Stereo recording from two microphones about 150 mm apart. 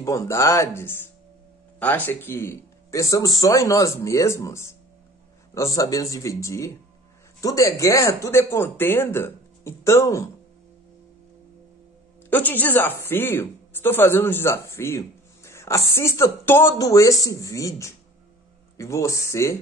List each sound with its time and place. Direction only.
0.0 s speech: 20° left (ahead or behind)
12.3 s a woman's voice: 10° left (ahead or behind)